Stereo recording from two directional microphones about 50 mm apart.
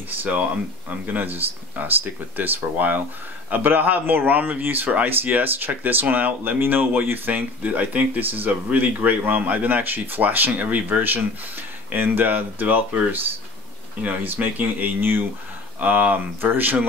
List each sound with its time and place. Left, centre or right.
1.0 s speech: right
15.8 s speech: right